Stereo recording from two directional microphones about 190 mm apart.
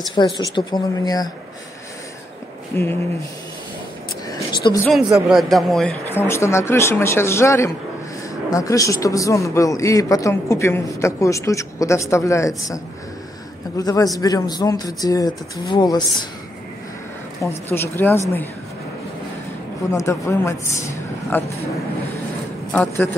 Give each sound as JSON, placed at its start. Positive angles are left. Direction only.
{"t": 0.1, "sound": "speech", "side_deg": 25}
{"t": 2.7, "sound": "speech", "side_deg": 10}
{"t": 4.5, "sound": "a woman's voice", "side_deg": 25}
{"t": 4.9, "sound": "a man's voice", "side_deg": 0}
{"t": 17.7, "sound": "speech", "side_deg": 10}
{"t": 19.9, "sound": "speech", "side_deg": 15}
{"t": 22.7, "sound": "a man's voice", "side_deg": 5}